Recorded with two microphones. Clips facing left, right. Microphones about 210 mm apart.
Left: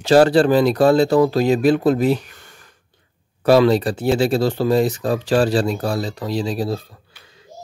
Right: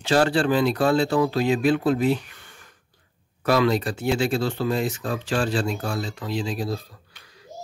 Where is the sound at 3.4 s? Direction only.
30° left (ahead or behind).